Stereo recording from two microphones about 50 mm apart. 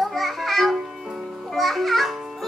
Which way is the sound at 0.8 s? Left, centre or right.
Centre.